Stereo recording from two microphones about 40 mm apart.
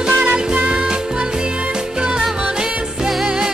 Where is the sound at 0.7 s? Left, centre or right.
Centre.